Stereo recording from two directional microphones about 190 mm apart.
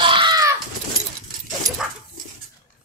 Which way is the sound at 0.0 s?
25° right (ahead or behind).